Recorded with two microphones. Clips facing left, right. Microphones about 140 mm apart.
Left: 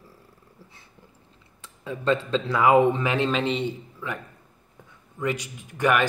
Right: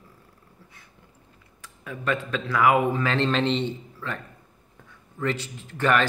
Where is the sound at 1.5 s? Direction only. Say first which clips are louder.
Left 4 dB; 25° left (ahead or behind).